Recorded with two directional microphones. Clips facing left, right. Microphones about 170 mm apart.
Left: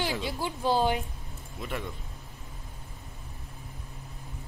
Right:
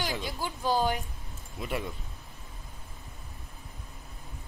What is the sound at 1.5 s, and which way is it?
Speech, 10° right (ahead or behind).